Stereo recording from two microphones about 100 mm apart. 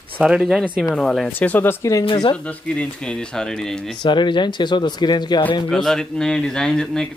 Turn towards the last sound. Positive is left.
turn(degrees=5)  # may be behind; listen again after turning